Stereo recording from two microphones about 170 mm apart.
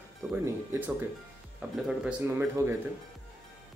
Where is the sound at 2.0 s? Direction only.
10° right (ahead or behind).